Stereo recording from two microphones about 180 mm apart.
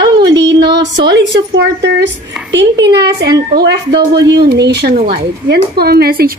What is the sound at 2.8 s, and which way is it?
Speech, 65° right (ahead or behind).